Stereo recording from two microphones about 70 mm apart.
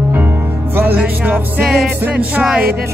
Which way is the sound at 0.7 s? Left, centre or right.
Right.